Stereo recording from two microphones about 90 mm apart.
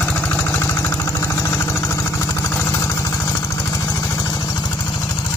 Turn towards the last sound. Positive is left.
turn(degrees=45)  # may be behind; listen again after turning